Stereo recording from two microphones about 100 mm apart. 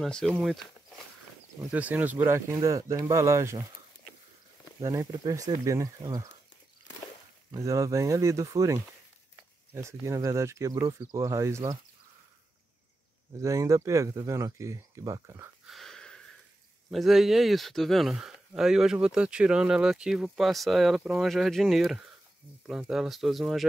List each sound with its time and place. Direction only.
0.0 s speech: 5° left (ahead or behind)
1.7 s speech: 15° right (ahead or behind)
2.5 s speech: 35° right (ahead or behind)
4.7 s speech: 35° right (ahead or behind)
7.5 s speech: 30° right (ahead or behind)
13.4 s speech: 30° right (ahead or behind)
15.6 s a sound: centre (ahead or behind)
16.9 s speech: centre (ahead or behind)